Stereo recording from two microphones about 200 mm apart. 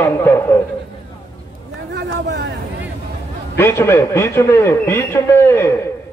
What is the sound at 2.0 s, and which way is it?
Speech, 60° right (ahead or behind).